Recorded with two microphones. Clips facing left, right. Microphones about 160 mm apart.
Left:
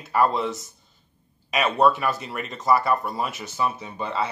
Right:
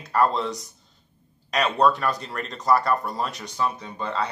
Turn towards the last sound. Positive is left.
turn(degrees=10)  # may be behind; listen again after turning